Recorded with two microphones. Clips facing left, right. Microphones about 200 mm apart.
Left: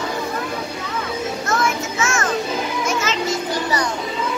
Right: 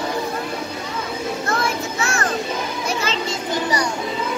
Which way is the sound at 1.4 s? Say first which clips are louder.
Left 2 dB; 35° right (ahead or behind).